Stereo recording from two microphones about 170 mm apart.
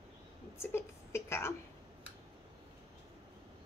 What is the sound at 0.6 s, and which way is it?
Speech, 15° left (ahead or behind).